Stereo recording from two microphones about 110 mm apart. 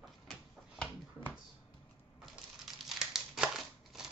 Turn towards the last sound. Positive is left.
turn(degrees=-5)  # may be behind; listen again after turning